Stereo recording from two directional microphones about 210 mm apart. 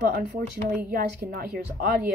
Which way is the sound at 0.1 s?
50° right (ahead or behind).